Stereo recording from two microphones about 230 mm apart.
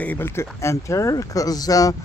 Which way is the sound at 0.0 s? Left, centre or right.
Centre.